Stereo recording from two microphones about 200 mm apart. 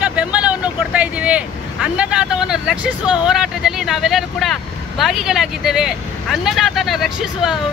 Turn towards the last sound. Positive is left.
turn(degrees=0)  # may be behind; listen again after turning